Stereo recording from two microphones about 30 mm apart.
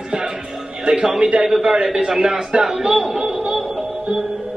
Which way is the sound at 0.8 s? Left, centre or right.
Right.